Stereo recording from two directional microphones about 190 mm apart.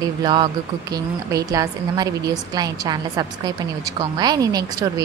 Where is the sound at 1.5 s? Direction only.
20° right (ahead or behind).